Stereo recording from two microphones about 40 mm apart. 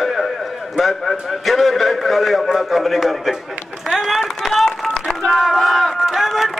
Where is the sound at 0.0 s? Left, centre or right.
Centre.